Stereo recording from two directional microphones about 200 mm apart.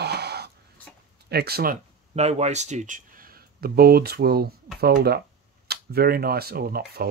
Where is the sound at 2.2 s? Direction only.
30° right (ahead or behind).